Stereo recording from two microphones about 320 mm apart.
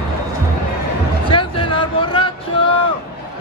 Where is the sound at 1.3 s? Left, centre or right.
Centre.